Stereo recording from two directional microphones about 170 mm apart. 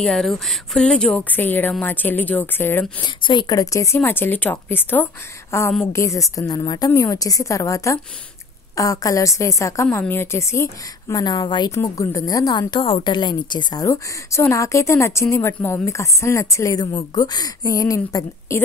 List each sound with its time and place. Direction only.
0.0 s speech: centre (ahead or behind)
3.0 s a woman's voice: 25° left (ahead or behind)